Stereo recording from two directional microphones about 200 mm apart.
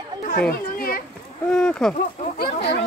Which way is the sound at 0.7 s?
45° left (ahead or behind).